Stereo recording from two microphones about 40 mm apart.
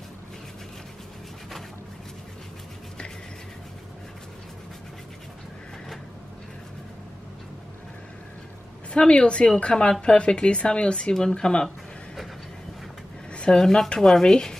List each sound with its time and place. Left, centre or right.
8.9 s speech: left
13.3 s a sound: left
13.6 s speech: centre